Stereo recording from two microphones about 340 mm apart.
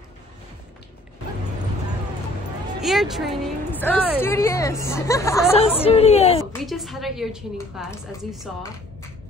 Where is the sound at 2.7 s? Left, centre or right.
Centre.